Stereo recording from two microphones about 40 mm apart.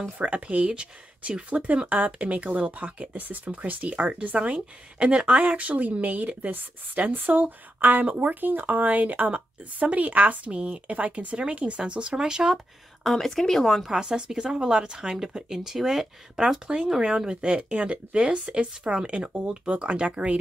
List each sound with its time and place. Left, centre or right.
0.2 s speech: right; by 12.5 s centre
13.0 s speech: centre
13.8 s speech: centre
16.6 s speech: right